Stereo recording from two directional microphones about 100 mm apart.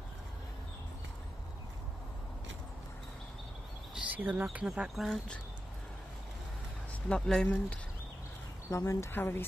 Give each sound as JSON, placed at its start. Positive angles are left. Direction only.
{"t": 4.1, "sound": "speech", "side_deg": -15}
{"t": 7.1, "sound": "speech", "side_deg": 5}
{"t": 8.6, "sound": "speech", "side_deg": 30}